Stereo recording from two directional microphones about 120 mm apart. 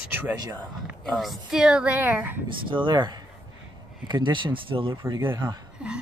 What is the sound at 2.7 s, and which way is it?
Speech, 40° right (ahead or behind).